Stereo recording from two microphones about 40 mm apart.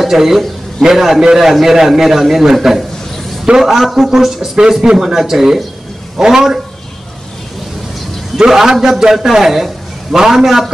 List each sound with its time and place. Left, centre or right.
0.0 s a man's voice: centre
8.5 s speech: centre